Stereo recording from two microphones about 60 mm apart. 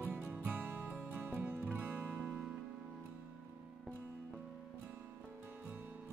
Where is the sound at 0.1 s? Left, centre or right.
Right.